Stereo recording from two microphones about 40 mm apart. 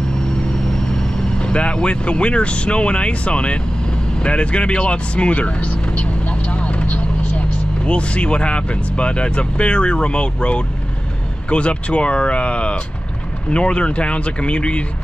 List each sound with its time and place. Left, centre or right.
0.7 s vehicle: centre
1.4 s speech: left